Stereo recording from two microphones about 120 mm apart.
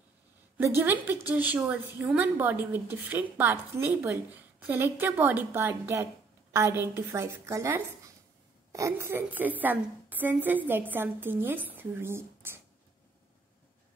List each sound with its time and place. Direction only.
0.6 s a woman's voice: 20° right (ahead or behind)